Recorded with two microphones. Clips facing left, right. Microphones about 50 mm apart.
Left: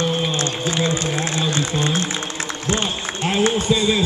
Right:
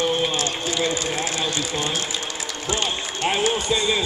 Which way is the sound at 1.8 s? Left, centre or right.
Left.